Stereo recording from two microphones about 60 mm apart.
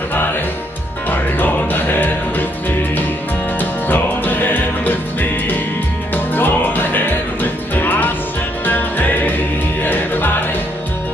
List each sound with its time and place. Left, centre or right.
1.1 s music: left
3.5 s music: left